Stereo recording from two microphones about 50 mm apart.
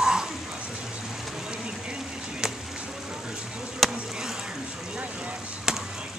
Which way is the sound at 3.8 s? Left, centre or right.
Centre.